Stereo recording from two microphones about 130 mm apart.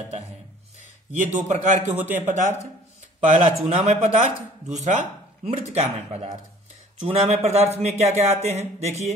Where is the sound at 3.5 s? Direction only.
55° right (ahead or behind).